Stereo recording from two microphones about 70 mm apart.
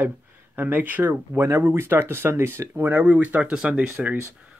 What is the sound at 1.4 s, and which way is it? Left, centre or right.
Speech, right.